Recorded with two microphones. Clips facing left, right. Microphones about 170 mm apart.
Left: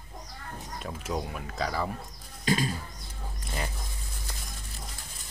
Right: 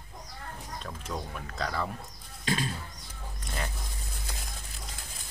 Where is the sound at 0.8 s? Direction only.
10° left (ahead or behind).